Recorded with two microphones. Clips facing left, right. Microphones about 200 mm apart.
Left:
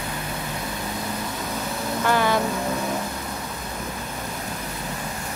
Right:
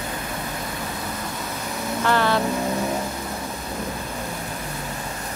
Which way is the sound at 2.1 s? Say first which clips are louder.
Even; 10° left (ahead or behind).